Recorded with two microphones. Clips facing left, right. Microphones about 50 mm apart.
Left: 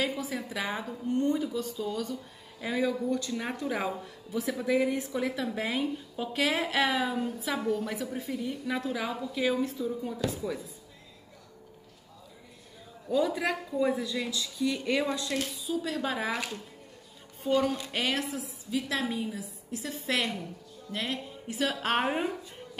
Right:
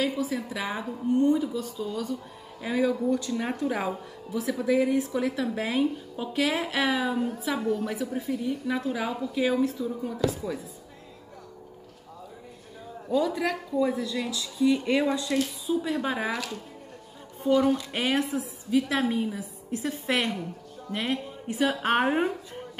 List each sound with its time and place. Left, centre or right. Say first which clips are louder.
0.0 s a woman's voice: right 4 dB; centre
13.2 s a woman's voice: left 2 dB; centre
14.1 s a woman's voice: right 2 dB; centre
14.6 s a woman's voice: right 6 dB; centre
15.3 s a woman's voice: right 7 dB; centre
15.7 s a woman's voice: right 3 dB; centre
17.4 s speech: right 4 dB; centre
17.9 s a woman's voice: right 4 dB; right
18.7 s a woman's voice: right 6 dB; right
20.9 s a woman's voice: right 4 dB; right